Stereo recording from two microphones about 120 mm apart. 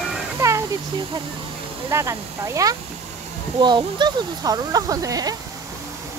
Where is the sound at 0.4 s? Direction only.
25° right (ahead or behind).